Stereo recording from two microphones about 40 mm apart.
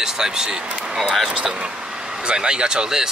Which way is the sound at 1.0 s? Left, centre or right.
Centre.